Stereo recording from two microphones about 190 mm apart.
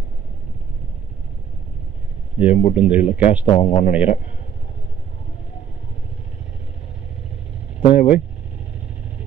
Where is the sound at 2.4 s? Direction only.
30° left (ahead or behind).